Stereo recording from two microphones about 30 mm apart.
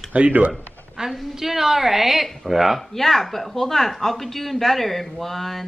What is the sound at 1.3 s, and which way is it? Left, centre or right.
Speech, centre.